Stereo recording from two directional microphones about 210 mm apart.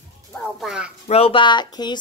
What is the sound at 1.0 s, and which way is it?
Speech, 30° left (ahead or behind).